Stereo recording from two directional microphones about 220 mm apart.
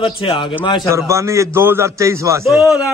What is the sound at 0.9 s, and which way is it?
A man's voice, 15° right (ahead or behind).